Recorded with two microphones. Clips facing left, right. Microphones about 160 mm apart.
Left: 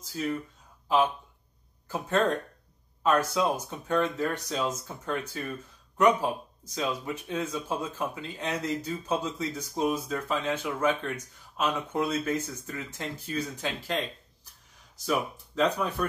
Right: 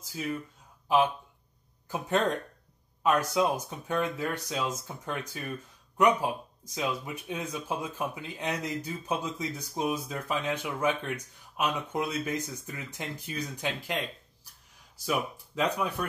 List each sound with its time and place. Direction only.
1.9 s speech: 15° right (ahead or behind)
15.0 s speech: 10° right (ahead or behind)